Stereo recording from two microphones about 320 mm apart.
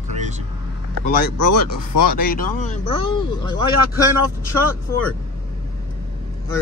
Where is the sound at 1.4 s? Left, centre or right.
Left.